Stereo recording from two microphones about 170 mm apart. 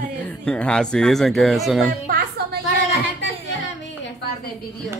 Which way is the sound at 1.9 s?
55° right (ahead or behind).